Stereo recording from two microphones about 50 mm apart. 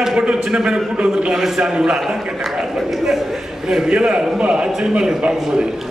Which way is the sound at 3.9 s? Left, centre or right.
Right.